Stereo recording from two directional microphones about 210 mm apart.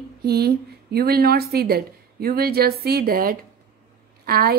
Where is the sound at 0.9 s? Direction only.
50° right (ahead or behind).